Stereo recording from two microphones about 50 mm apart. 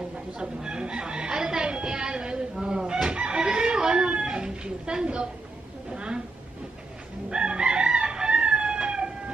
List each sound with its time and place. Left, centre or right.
0.4 s chicken: centre
7.2 s chicken: centre